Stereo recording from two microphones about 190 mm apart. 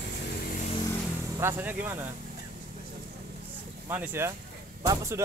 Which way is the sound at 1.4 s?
15° right (ahead or behind).